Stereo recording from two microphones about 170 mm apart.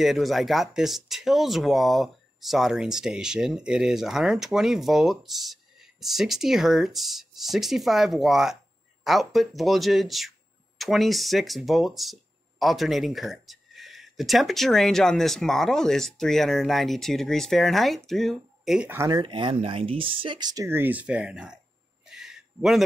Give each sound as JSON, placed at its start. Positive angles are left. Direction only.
{"t": 0.0, "sound": "speech", "side_deg": 0}
{"t": 18.9, "sound": "speech", "side_deg": -20}
{"t": 22.1, "sound": "a sound", "side_deg": -5}